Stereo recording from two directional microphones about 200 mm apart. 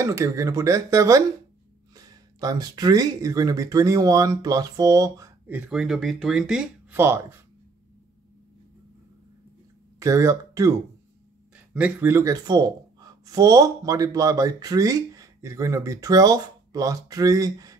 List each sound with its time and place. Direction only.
0.0 s speech: 15° right (ahead or behind)
2.4 s speech: 20° right (ahead or behind)
5.7 s speech: centre (ahead or behind)
9.9 s speech: 15° right (ahead or behind)